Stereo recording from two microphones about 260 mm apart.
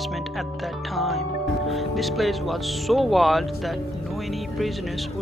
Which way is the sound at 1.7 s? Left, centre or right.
Centre.